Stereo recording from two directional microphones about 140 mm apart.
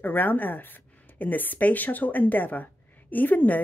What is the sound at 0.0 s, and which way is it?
A woman's voice, 15° left (ahead or behind).